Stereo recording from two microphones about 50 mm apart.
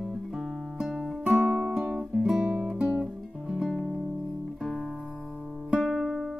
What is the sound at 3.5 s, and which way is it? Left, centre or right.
Music, centre.